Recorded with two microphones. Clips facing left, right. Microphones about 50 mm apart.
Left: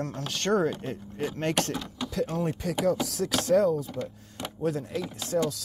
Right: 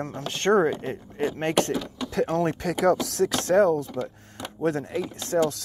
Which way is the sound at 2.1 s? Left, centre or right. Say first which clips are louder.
Right 5 dB; right.